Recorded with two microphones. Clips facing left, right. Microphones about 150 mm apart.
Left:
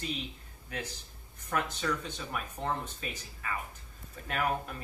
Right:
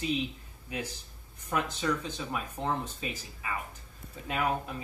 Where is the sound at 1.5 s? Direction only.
5° right (ahead or behind).